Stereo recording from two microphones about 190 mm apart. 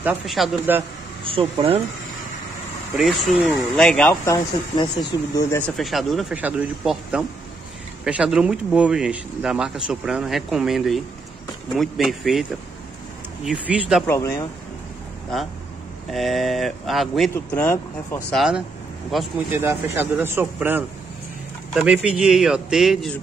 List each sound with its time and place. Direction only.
0.0 s speech: 5° right (ahead or behind)
1.2 s speech: 30° right (ahead or behind)
3.0 s speech: centre (ahead or behind)
4.1 s speech: 20° left (ahead or behind)
5.8 s speech: centre (ahead or behind)
14.0 s speech: 15° left (ahead or behind)
16.1 s speech: centre (ahead or behind)
19.6 s speech: 15° right (ahead or behind)